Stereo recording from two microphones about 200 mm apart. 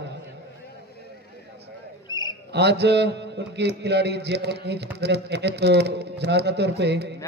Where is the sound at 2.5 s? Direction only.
55° right (ahead or behind).